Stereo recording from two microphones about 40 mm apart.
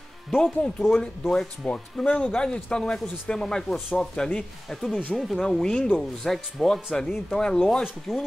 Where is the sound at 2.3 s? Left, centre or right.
Left.